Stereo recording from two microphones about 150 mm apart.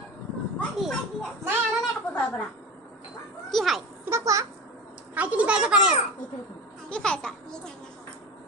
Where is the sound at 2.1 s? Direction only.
10° left (ahead or behind).